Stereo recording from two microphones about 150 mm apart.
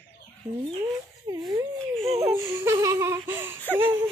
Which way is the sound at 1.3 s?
25° right (ahead or behind).